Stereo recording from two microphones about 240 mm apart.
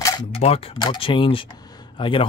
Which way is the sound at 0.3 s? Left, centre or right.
Left.